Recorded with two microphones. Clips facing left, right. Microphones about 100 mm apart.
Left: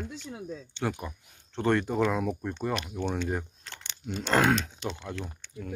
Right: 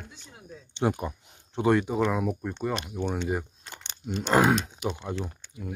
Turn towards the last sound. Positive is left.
turn(degrees=-15)  # may be behind; listen again after turning